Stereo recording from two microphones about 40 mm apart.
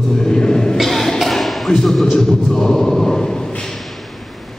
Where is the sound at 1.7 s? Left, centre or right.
Centre.